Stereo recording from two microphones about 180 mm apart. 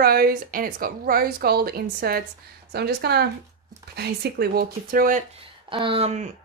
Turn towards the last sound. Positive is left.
turn(degrees=-35)  # may be behind; listen again after turning